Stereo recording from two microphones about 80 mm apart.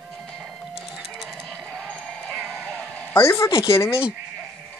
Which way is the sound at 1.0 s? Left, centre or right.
Centre.